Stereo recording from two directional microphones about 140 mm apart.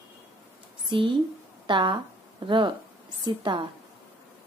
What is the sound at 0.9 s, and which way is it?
A woman's voice, 35° right (ahead or behind).